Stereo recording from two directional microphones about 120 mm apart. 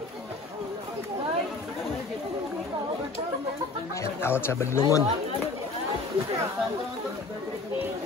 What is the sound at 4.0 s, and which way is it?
Speech, 20° left (ahead or behind).